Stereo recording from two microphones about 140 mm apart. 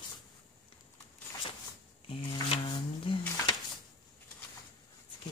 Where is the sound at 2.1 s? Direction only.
40° left (ahead or behind).